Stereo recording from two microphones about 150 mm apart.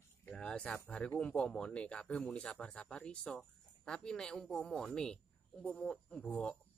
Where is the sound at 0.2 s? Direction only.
5° left (ahead or behind).